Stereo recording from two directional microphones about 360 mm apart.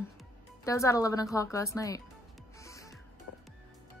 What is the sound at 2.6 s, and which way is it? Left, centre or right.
Music, centre.